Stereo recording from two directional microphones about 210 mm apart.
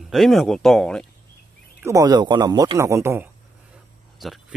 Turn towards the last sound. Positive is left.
turn(degrees=0)  # may be behind; listen again after turning